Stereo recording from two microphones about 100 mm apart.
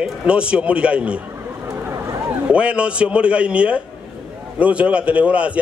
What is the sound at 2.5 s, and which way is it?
A man's voice, 10° right (ahead or behind).